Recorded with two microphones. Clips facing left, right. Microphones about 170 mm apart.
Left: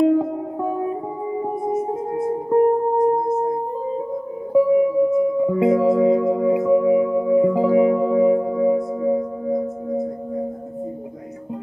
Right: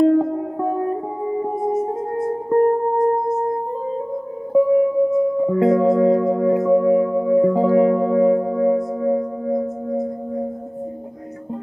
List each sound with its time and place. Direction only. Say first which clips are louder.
0.0 s music: right 2 dB; 5° left (ahead or behind)
4.6 s music: even; 5° left (ahead or behind)